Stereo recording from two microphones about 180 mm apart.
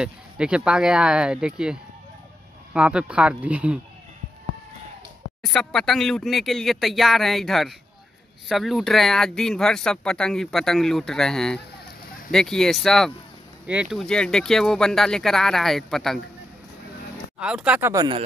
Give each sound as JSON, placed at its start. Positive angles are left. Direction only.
{"t": 0.0, "sound": "speech", "side_deg": -5}
{"t": 5.4, "sound": "speech", "side_deg": 0}
{"t": 17.4, "sound": "speech", "side_deg": -5}
{"t": 17.9, "sound": "speech", "side_deg": -25}